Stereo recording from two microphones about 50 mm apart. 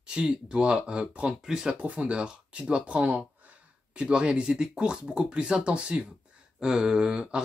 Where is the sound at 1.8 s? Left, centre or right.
Right.